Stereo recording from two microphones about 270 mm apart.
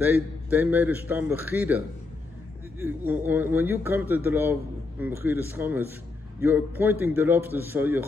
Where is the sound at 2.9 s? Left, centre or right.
Centre.